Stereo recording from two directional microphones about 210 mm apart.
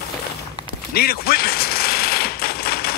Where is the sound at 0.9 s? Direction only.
45° left (ahead or behind).